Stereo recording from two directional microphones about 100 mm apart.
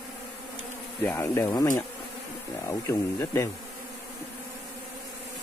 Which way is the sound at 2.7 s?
30° left (ahead or behind).